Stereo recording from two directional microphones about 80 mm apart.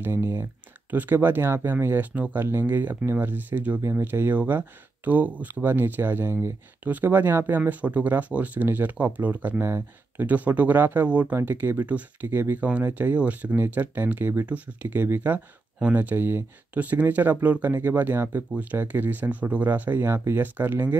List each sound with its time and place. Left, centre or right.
0.0 s speech: right
10.2 s speech: centre